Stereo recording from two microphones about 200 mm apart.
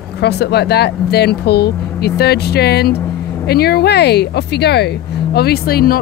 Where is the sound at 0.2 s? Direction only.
55° left (ahead or behind).